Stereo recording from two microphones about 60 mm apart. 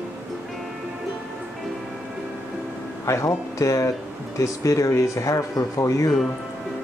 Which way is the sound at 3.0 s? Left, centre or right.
Left.